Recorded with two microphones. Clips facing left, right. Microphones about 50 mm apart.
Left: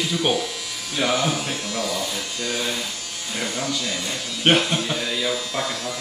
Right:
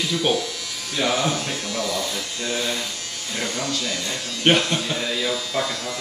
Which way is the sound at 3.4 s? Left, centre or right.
Centre.